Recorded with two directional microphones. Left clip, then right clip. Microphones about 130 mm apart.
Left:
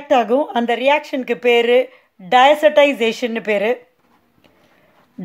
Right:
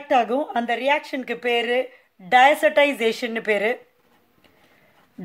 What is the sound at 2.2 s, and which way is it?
A woman's voice, 15° left (ahead or behind).